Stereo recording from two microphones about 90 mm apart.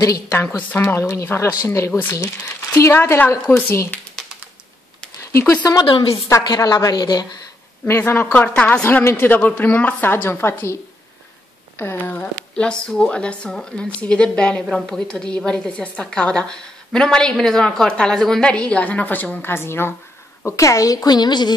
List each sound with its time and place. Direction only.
0.6 s a woman's voice: 20° left (ahead or behind)
0.9 s speech: 30° left (ahead or behind)
1.9 s a woman's voice: 20° left (ahead or behind)
2.1 s a woman's voice: 35° left (ahead or behind)
3.9 s a sound: 10° left (ahead or behind)
5.4 s a woman's voice: 20° left (ahead or behind)
5.9 s a woman's voice: 70° left (ahead or behind)
6.4 s a woman's voice: 50° left (ahead or behind)
7.8 s a woman's voice: 25° left (ahead or behind); by 21.5 s 50° left (ahead or behind)